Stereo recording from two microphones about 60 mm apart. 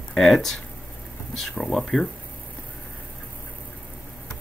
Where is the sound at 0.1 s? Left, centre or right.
Centre.